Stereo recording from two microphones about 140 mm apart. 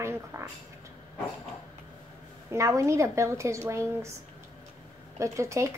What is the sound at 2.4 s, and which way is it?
A woman's voice, 20° right (ahead or behind).